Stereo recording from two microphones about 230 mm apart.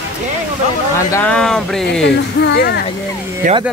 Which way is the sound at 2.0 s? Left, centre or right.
Left.